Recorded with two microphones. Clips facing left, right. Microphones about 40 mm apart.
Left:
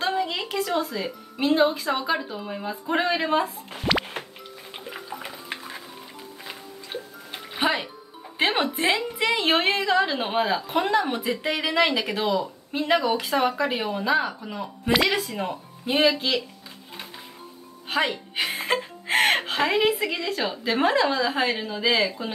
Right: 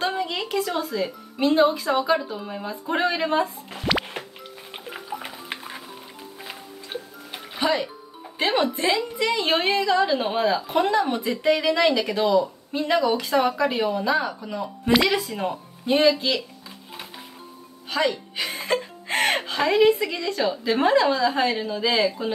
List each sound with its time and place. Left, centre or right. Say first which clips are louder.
0.0 s speech: even; centre
3.7 s plop: even; centre
4.7 s music: right 2 dB; centre
6.9 s music: right 1 dB; centre
7.5 s speech: right 1 dB; left
17.8 s speech: right 1 dB; left; by 22.3 s centre